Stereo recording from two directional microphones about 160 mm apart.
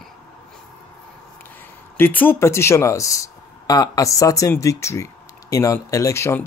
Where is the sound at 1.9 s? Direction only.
10° left (ahead or behind).